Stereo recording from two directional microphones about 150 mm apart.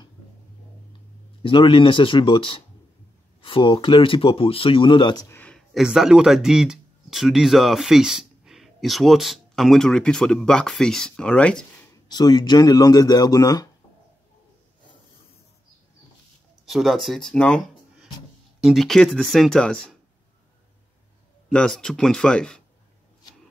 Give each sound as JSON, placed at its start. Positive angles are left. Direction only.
{"t": 1.4, "sound": "speech", "side_deg": 35}
{"t": 5.3, "sound": "a sound", "side_deg": 10}
{"t": 5.8, "sound": "speech", "side_deg": -5}
{"t": 12.1, "sound": "speech", "side_deg": 30}
{"t": 16.6, "sound": "speech", "side_deg": 0}
{"t": 21.5, "sound": "speech", "side_deg": 5}